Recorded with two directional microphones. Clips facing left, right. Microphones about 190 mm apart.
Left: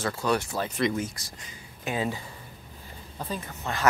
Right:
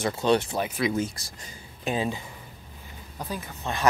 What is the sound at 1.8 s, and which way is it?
Speech, 20° right (ahead or behind).